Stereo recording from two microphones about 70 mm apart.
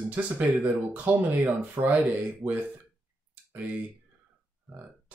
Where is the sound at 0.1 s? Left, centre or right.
Right.